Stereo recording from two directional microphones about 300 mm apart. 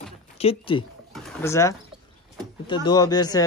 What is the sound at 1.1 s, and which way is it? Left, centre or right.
Pigeon, centre.